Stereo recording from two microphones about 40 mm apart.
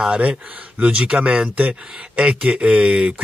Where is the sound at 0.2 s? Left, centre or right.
Right.